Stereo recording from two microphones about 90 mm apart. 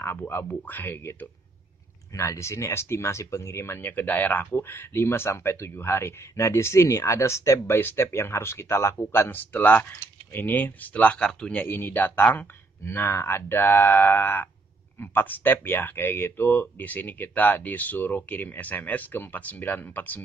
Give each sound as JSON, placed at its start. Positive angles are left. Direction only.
{"t": 0.0, "sound": "speech", "side_deg": 25}
{"t": 11.6, "sound": "speech", "side_deg": 25}
{"t": 12.8, "sound": "speech", "side_deg": 30}